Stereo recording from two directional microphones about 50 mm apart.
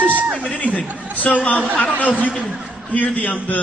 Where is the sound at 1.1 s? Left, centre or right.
Left.